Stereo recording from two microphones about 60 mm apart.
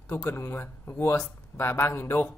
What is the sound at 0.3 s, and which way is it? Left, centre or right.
Speech, left.